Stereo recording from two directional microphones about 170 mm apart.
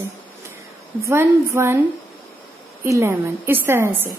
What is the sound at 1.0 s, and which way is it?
Speech, 15° right (ahead or behind).